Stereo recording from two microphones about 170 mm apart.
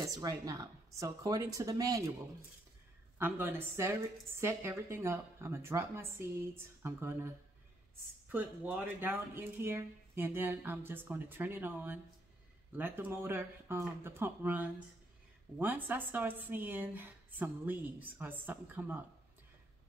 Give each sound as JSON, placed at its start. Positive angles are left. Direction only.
{"t": 0.0, "sound": "a woman's voice", "side_deg": -20}
{"t": 3.2, "sound": "a woman's voice", "side_deg": -10}